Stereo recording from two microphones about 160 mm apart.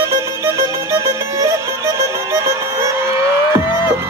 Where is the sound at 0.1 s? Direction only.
15° right (ahead or behind).